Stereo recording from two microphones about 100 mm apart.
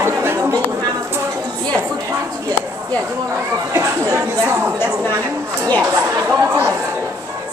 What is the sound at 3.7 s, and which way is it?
Speech, 30° right (ahead or behind).